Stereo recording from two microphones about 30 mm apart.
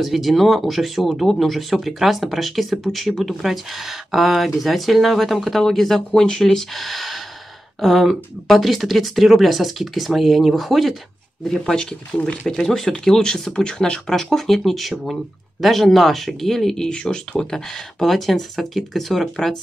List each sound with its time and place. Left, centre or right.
0.0 s speech: centre
11.6 s speech: centre
14.3 s speech: centre
16.3 s speech: centre
16.9 s speech: left; by 19.2 s centre